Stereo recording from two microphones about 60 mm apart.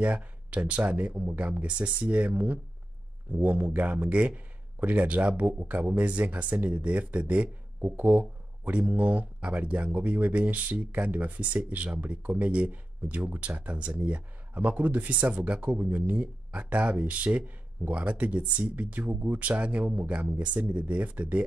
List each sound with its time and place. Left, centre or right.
0.0 s speech: right